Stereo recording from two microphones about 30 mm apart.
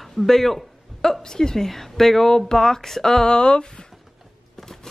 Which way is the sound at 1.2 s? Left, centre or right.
Left.